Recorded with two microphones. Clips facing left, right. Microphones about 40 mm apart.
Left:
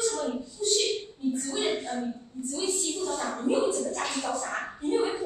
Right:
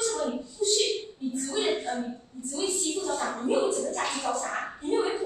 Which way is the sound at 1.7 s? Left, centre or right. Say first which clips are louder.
Right 1 dB; centre.